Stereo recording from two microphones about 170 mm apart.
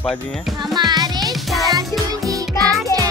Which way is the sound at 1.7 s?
20° right (ahead or behind).